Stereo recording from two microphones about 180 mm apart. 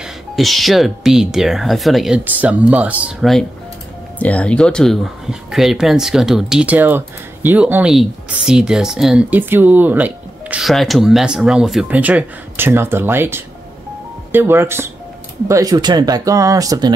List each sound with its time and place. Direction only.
0.0 s speech: centre (ahead or behind); by 16.9 s 20° right (ahead or behind)